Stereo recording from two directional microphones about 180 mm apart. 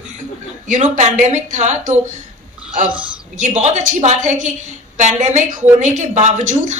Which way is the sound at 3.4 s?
40° right (ahead or behind).